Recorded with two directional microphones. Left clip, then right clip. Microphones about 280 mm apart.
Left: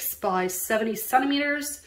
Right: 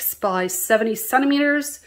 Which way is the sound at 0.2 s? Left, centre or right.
Centre.